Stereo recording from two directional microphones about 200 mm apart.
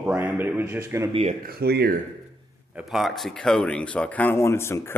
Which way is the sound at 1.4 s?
50° right (ahead or behind).